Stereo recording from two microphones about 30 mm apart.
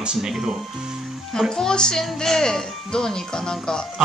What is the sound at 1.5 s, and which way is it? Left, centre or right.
Speech, left.